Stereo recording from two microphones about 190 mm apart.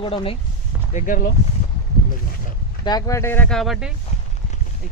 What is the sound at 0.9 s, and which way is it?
Speech, 45° left (ahead or behind).